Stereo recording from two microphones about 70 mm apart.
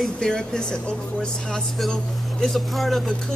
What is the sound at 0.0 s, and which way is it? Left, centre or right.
A woman's voice, centre.